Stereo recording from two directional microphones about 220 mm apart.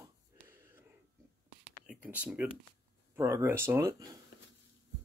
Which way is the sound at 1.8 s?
5° right (ahead or behind).